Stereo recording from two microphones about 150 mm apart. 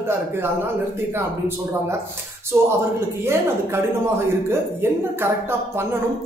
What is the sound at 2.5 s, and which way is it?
Speech, 15° right (ahead or behind).